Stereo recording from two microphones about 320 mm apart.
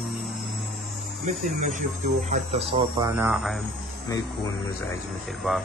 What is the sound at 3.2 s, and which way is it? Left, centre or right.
Speech, centre.